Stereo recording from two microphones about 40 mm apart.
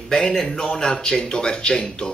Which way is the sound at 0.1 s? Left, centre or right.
Centre.